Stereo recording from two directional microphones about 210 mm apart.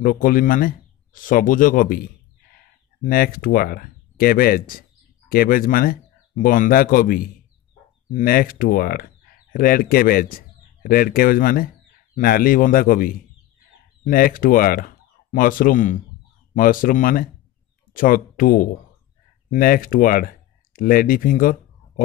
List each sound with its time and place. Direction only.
0.0 s speech: 40° left (ahead or behind)